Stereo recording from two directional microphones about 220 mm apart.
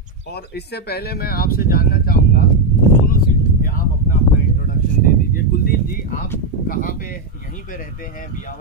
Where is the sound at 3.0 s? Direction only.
40° left (ahead or behind).